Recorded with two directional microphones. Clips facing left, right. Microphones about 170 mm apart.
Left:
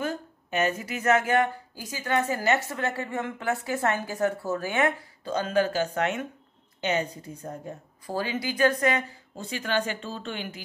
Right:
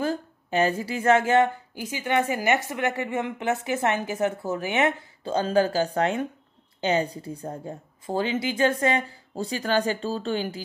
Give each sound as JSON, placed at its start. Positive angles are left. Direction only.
{"t": 0.0, "sound": "a woman's voice", "side_deg": -30}